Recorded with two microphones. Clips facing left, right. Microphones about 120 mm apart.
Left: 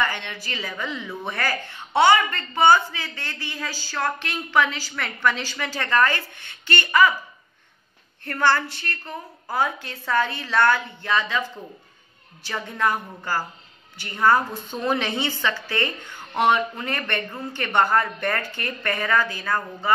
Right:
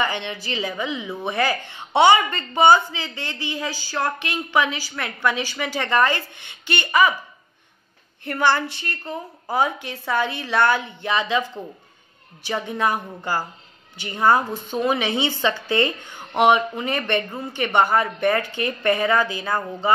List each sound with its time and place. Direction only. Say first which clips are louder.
0.0 s a woman's voice: right 2 dB; 20° right (ahead or behind)
8.2 s a woman's voice: right 1 dB; 15° right (ahead or behind)
12.4 s a woman's voice: right 2 dB; 15° right (ahead or behind)
14.7 s a woman's voice: right 3 dB; 10° right (ahead or behind)